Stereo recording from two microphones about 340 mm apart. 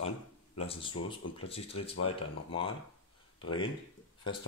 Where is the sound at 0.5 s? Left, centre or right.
Centre.